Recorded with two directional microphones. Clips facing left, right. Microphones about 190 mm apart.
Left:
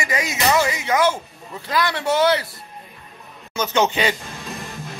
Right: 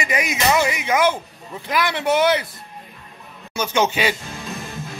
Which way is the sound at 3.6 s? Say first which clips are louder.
Even; 10° right (ahead or behind).